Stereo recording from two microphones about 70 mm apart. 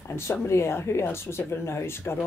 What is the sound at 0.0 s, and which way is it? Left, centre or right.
Speech, left.